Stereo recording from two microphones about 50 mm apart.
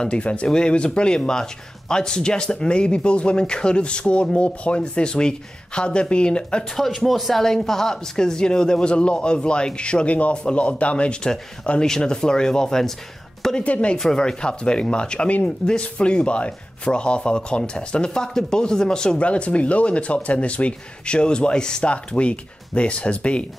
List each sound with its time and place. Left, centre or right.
0.0 s speech: left
6.8 s a woman's voice: centre
13.7 s speech: left
13.9 s speech: centre